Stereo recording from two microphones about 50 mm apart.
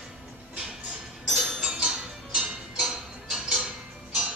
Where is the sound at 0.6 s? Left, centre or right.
Centre.